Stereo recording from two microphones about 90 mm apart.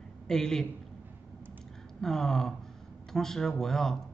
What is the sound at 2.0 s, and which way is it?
Speech, 5° left (ahead or behind).